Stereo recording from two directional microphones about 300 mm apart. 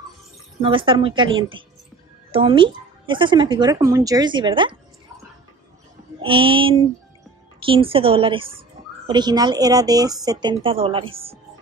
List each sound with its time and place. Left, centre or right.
0.6 s a woman's voice: centre
6.2 s a woman's voice: centre